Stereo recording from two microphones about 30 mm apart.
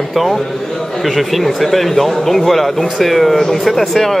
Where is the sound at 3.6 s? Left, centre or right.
Centre.